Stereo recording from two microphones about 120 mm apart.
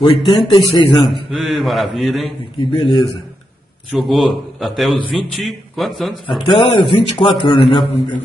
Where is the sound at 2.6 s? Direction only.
50° left (ahead or behind).